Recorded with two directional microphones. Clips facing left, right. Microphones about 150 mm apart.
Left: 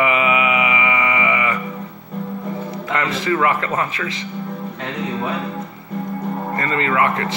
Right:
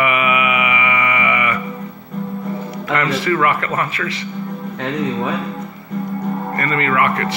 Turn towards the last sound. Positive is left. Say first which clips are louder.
# right 1 dB
turn(degrees=20)  # may be behind; listen again after turning